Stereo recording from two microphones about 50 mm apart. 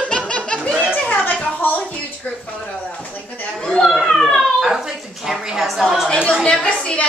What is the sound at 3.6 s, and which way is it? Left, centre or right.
Children playing, centre.